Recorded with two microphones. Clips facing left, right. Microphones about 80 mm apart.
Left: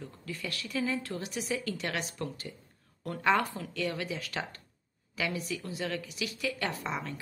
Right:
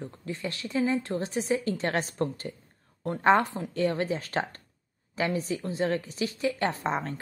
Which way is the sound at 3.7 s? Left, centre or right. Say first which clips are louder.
Right 8 dB; right.